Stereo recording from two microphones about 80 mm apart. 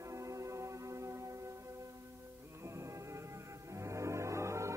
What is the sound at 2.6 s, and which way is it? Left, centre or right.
Music, right.